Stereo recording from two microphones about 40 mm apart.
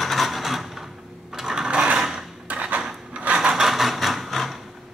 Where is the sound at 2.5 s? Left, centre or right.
Right.